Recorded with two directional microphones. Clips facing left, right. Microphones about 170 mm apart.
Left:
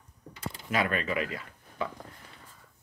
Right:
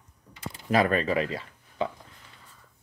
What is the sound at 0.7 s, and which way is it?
Speech, 35° right (ahead or behind).